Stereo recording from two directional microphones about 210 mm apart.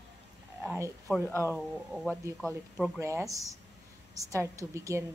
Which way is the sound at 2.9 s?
15° right (ahead or behind).